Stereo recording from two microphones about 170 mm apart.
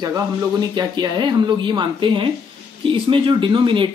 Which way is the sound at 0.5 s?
25° right (ahead or behind).